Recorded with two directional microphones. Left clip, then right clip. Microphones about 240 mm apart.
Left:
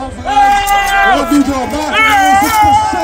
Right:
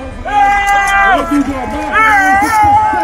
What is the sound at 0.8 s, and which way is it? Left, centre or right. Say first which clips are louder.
Run: even; left.